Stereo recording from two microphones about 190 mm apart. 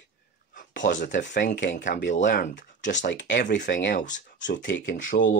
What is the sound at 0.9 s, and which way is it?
Speech, 40° left (ahead or behind).